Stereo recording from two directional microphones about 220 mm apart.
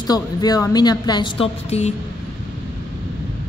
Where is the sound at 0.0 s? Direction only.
15° left (ahead or behind).